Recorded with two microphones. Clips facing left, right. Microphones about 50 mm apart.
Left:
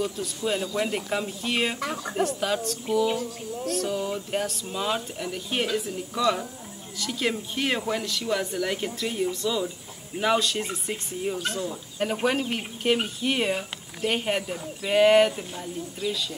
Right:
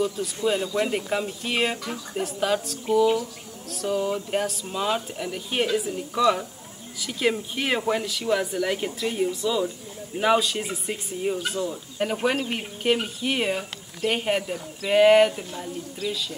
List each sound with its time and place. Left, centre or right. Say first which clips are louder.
0.0 s speech: right 4 dB; centre
1.8 s speech: left 3 dB; left
2.1 s speech: right 2 dB; centre